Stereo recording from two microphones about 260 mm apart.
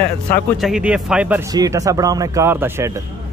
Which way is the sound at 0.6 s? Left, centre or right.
Centre.